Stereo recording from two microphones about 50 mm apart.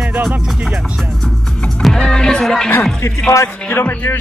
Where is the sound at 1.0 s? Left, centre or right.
Centre.